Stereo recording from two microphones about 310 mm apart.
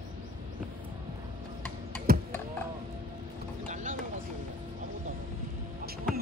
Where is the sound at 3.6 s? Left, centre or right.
Right.